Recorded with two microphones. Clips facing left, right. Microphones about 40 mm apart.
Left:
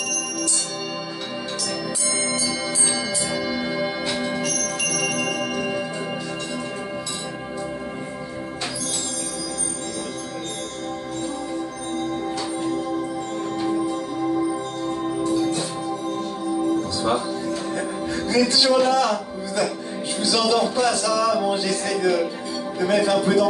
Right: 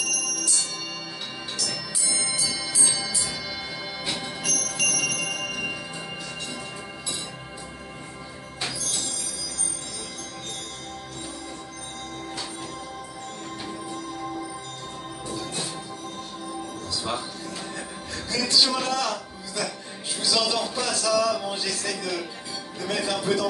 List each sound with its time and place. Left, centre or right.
1.6 s organ: centre
3.3 s bell: centre
18.3 s speech: centre
20.2 s music: centre